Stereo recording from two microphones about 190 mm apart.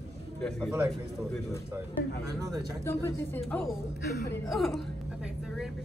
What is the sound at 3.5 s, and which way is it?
A woman's voice, centre (ahead or behind).